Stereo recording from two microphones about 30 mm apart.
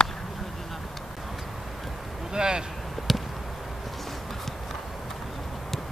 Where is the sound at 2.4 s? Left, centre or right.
Right.